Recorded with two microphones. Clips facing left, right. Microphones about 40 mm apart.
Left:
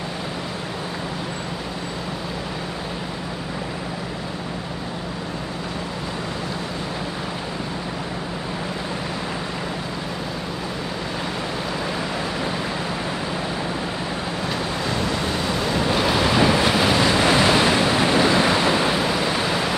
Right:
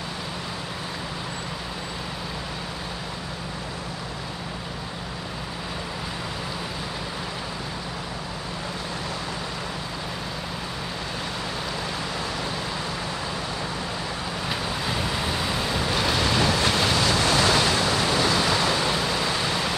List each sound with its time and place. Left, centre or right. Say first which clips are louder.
14.9 s vehicle: left 3 dB; centre